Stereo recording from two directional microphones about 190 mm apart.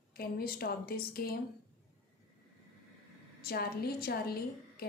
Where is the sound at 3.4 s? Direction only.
55° left (ahead or behind).